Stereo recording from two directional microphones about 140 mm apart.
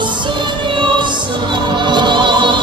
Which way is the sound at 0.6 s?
35° right (ahead or behind).